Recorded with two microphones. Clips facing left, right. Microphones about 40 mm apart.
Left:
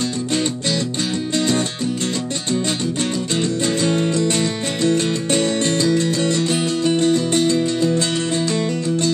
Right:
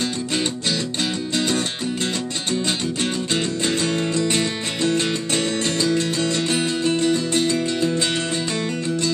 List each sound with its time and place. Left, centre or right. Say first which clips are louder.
1.3 s music: left 4 dB; right
3.3 s music: left 4 dB; right